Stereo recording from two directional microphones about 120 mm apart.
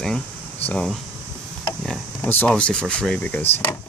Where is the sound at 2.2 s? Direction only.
15° left (ahead or behind).